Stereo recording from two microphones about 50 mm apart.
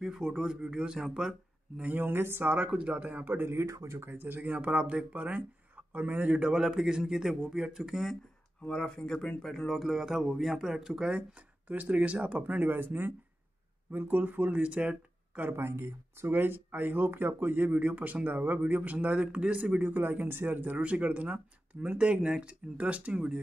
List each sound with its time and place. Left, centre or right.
0.0 s speech: centre
2.0 s speech: right
2.4 s speech: right
3.4 s speech: right
4.0 s speech: right
6.4 s speech: centre
8.6 s speech: centre
9.7 s speech: centre
11.6 s speech: right
15.5 s speech: right
20.0 s speech: right
20.7 s speech: right